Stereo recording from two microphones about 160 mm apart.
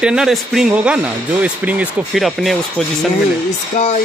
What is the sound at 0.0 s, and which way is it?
Speech, 5° right (ahead or behind).